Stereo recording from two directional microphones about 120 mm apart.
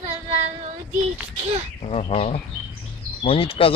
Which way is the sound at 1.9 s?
55° left (ahead or behind).